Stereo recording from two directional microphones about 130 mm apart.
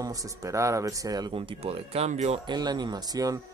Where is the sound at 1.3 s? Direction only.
45° right (ahead or behind).